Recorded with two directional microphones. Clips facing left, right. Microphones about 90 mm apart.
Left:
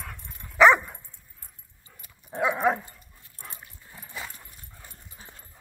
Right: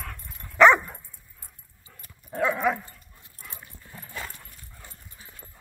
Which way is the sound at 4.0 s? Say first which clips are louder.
Right 1 dB; 10° left (ahead or behind).